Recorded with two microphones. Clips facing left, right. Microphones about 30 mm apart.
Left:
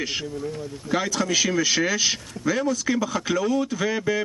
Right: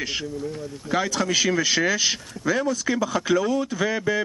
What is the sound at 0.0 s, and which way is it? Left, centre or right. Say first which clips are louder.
Speech: even; centre.